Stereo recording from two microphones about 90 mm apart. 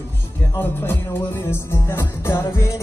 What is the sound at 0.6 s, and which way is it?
Music, 25° left (ahead or behind).